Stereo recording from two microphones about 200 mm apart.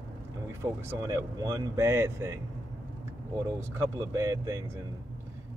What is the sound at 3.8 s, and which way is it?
Speech, 15° right (ahead or behind).